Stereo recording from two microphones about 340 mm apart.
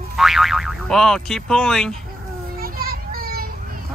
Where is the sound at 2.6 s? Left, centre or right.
Right.